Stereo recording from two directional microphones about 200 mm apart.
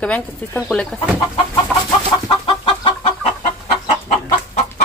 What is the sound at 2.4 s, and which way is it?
Chicken, 25° left (ahead or behind).